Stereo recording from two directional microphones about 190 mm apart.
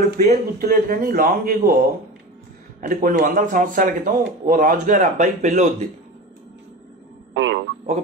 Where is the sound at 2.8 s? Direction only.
40° right (ahead or behind).